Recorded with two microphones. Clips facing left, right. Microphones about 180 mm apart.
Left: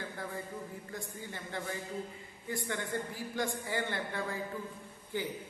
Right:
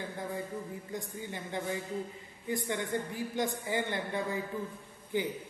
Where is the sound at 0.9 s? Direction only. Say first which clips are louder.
Right 5 dB; 20° right (ahead or behind).